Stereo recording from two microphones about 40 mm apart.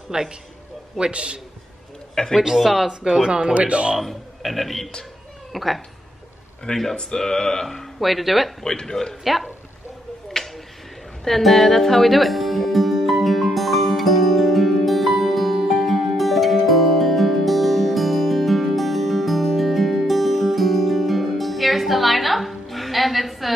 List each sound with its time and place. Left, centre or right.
0.1 s a man's voice: centre
2.4 s speech: centre
2.9 s speech: centre
3.5 s a man's voice: right
3.9 s speech: centre
8.6 s speech: centre
9.2 s speech: centre
10.2 s a sound: centre
11.2 s music: centre